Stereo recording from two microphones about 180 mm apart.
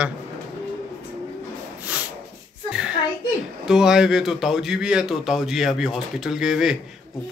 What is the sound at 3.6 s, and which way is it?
Speech, 5° right (ahead or behind).